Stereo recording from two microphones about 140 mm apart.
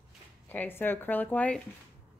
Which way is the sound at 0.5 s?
15° left (ahead or behind).